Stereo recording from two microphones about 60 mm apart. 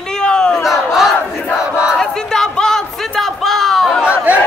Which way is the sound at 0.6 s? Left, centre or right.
Centre.